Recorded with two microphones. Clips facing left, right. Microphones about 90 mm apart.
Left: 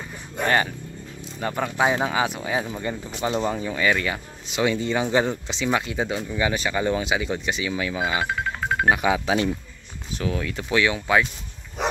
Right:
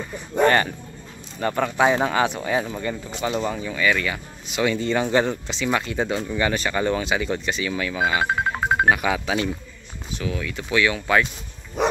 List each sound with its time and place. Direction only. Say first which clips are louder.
1.4 s speech: right 3 dB; 5° left (ahead or behind)
3.3 s speech: left 1 dB; 25° left (ahead or behind)
4.7 s speech: right 1 dB; 10° left (ahead or behind)
8.2 s music: right 4 dB; 35° right (ahead or behind)
8.9 s speech: left 1 dB; 20° left (ahead or behind)
10.1 s speech: left 1 dB; 35° left (ahead or behind); by 11.2 s 15° left (ahead or behind)